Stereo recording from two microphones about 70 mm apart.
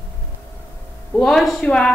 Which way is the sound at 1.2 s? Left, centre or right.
Centre.